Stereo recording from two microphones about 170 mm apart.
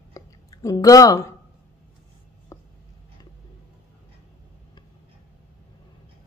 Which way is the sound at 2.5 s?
20° left (ahead or behind).